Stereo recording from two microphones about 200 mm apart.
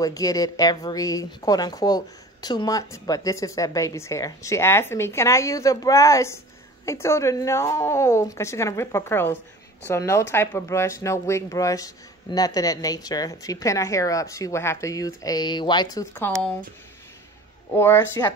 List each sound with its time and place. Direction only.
0.0 s speech: 15° left (ahead or behind)
16.3 s speech: 5° left (ahead or behind)
17.7 s speech: 10° left (ahead or behind)